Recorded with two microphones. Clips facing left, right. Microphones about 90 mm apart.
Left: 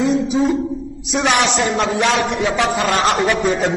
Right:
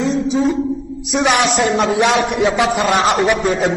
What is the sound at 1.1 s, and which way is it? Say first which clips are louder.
Speech: right 2 dB; centre (ahead or behind).